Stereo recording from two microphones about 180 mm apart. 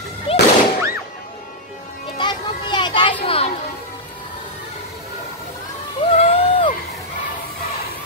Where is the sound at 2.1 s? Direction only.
25° left (ahead or behind).